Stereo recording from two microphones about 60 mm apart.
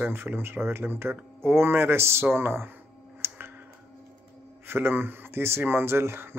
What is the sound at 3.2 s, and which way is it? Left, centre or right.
Tick-tock, right.